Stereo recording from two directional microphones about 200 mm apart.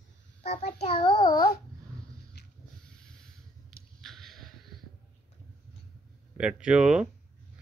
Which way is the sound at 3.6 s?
Centre (ahead or behind).